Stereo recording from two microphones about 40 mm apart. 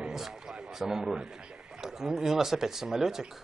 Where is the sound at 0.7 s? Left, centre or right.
Centre.